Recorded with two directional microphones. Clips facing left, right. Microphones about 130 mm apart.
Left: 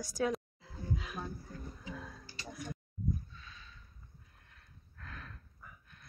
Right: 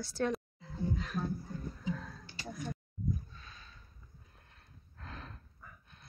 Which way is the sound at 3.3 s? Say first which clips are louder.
Even; 40° right (ahead or behind).